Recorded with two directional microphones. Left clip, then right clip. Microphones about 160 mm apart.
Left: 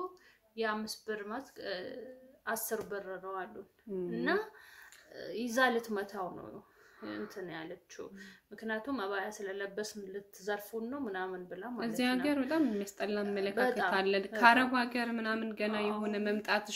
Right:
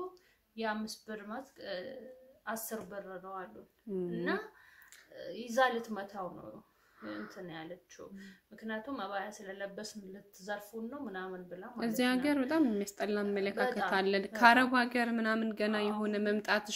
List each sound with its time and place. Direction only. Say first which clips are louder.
0.6 s a woman's voice: left 2 dB; 25° left (ahead or behind); by 3.4 s 40° left (ahead or behind)
3.9 s a woman's voice: right 1 dB; 35° right (ahead or behind)
5.1 s speech: even; 45° left (ahead or behind)
7.2 s speech: left 2 dB; 45° left (ahead or behind)
11.7 s a woman's voice: right 1 dB; 35° right (ahead or behind)
13.6 s speech: left 4 dB; 50° left (ahead or behind)
13.8 s a woman's voice: left 1 dB; 30° right (ahead or behind)